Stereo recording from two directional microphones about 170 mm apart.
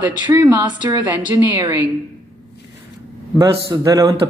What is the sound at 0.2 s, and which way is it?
Speech, 25° right (ahead or behind).